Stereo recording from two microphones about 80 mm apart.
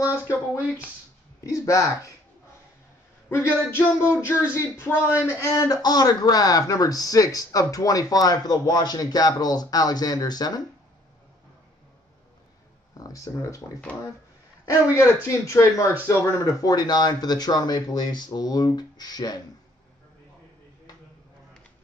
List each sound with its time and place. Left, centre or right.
0.0 s speech: right
1.4 s speech: left
3.7 s speech: left
12.9 s speech: left
14.9 s speech: left